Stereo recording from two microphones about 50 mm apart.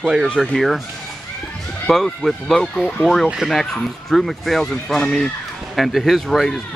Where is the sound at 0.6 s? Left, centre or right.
Centre.